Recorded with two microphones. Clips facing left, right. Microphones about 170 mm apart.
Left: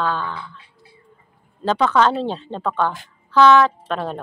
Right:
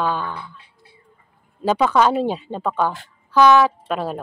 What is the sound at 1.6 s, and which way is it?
Speech, 10° right (ahead or behind).